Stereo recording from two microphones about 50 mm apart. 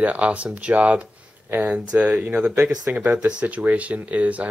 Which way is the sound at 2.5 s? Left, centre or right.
Centre.